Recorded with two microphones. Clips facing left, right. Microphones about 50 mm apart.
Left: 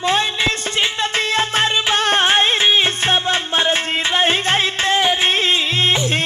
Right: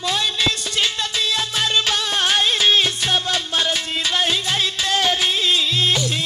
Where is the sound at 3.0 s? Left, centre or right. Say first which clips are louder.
Left 4 dB; left.